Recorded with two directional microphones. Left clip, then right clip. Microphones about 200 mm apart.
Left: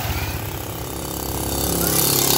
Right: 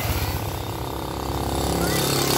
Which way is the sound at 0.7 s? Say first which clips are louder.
Even; 60° left (ahead or behind).